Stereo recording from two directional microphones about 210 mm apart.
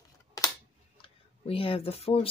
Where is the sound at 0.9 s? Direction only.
25° left (ahead or behind).